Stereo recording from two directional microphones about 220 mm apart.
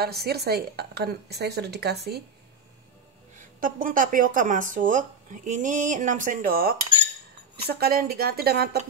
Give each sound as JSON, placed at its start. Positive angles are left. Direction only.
{"t": 0.0, "sound": "a woman's voice", "side_deg": -45}
{"t": 3.6, "sound": "speech", "side_deg": -40}
{"t": 7.8, "sound": "a woman's voice", "side_deg": -45}